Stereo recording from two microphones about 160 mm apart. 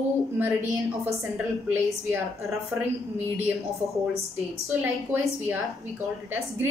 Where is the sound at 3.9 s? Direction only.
20° left (ahead or behind).